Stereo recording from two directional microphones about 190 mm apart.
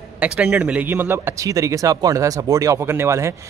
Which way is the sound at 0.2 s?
5° right (ahead or behind).